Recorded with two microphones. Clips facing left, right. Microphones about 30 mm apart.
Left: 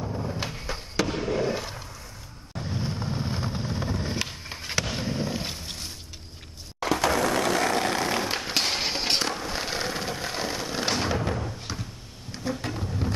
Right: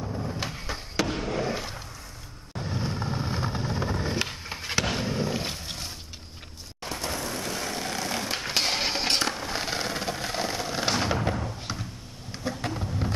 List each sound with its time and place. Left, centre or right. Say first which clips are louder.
0.0 s fireworks: left 1 dB; centre
2.5 s vehicle: even; centre
4.0 s skateboard: right 2 dB; centre
4.9 s a sound: right 1 dB; centre
6.9 s ratchet: left 9 dB; left
7.6 s vehicle: left 8 dB; left
8.1 s dog: left 3 dB; centre
8.5 s a sound: even; centre
12.3 s vehicle: left 1 dB; centre